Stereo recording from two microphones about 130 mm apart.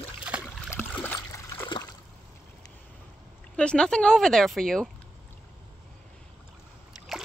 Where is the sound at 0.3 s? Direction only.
10° right (ahead or behind).